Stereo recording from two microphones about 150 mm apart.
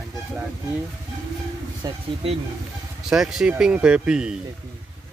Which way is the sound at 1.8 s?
25° right (ahead or behind).